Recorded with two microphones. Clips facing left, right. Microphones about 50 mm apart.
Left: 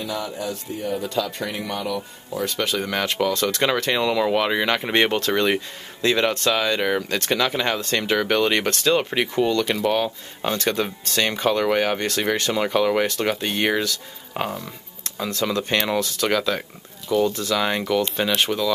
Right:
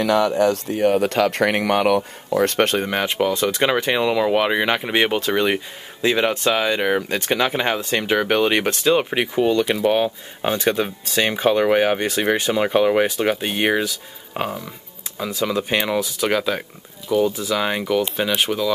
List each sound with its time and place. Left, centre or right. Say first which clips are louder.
0.0 s speech: right 11 dB; right
2.8 s speech: right 2 dB; right